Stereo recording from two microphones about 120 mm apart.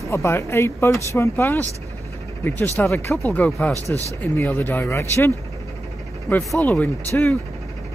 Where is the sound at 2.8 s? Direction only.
20° left (ahead or behind).